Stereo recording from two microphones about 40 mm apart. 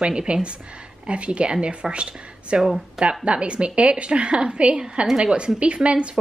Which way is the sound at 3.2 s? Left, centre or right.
Right.